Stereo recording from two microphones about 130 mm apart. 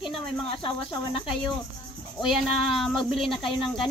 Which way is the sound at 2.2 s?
Centre (ahead or behind).